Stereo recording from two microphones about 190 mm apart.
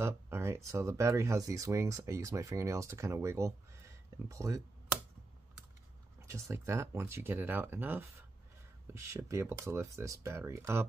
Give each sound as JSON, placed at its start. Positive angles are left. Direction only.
{"t": 0.0, "sound": "speech", "side_deg": -15}
{"t": 6.2, "sound": "speech", "side_deg": -15}